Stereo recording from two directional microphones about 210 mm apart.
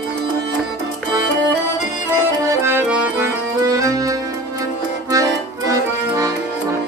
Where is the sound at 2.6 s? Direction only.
10° right (ahead or behind).